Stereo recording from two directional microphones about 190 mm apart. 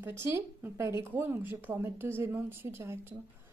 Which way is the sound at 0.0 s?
10° right (ahead or behind).